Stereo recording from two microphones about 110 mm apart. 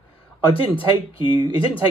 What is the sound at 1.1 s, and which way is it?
Speech, 50° left (ahead or behind).